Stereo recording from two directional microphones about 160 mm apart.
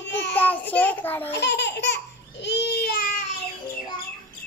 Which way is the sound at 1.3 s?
90° left.